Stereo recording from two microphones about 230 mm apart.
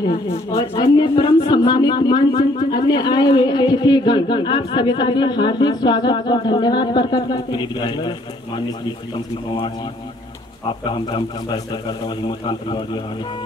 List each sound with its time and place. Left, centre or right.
0.0 s speech: centre
10.9 s speech: left